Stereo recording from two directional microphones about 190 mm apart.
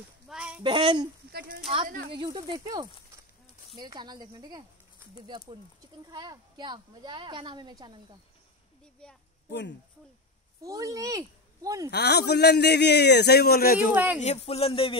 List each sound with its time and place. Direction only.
0.3 s a sound: 5° right (ahead or behind)
0.7 s a woman's voice: 25° right (ahead or behind)
1.9 s speech: 55° right (ahead or behind)
2.1 s a woman's voice: 25° right (ahead or behind)
6.0 s a woman's voice: 20° right (ahead or behind)
9.0 s a woman's voice: 5° left (ahead or behind)
9.5 s speech: 70° left (ahead or behind)
10.6 s speech: 15° right (ahead or behind)
11.9 s a man's voice: 60° left (ahead or behind)
13.9 s a man's voice: 10° right (ahead or behind)
14.2 s speech: 35° left (ahead or behind)